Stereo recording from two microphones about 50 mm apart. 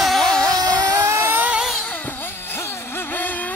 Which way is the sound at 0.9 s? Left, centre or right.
Right.